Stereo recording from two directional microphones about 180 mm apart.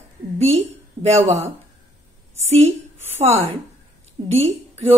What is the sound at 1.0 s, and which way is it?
Speech, 35° right (ahead or behind).